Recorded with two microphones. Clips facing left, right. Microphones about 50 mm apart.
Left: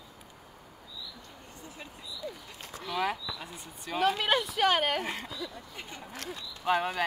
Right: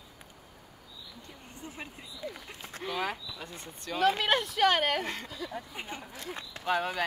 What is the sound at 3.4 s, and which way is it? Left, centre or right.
Speech, centre.